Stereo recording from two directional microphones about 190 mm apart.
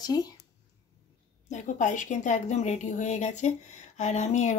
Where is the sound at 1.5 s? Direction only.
40° left (ahead or behind).